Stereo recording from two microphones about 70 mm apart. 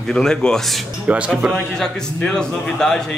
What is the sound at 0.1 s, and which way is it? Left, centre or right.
Speech, centre.